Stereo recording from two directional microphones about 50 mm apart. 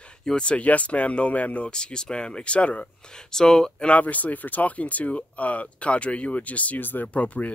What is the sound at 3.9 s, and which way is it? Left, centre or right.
Speech, left.